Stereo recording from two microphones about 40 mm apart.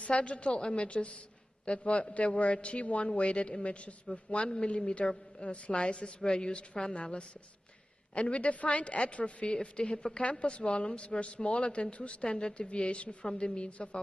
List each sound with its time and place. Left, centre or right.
0.0 s a man's voice: left